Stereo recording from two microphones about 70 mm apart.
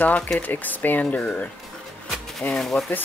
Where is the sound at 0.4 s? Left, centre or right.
Left.